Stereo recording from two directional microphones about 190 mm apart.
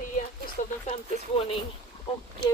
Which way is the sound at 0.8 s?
35° left (ahead or behind).